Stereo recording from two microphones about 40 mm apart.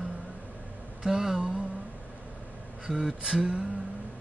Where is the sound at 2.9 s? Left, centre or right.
Centre.